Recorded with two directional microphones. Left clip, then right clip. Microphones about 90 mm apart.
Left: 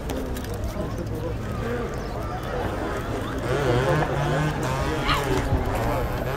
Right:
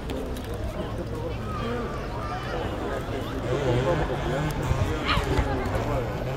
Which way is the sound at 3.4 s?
30° left (ahead or behind).